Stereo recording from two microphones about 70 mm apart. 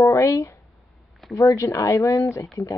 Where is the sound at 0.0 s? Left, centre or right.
Left.